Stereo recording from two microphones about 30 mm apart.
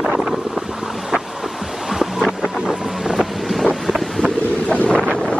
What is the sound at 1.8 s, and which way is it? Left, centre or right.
Boat, centre.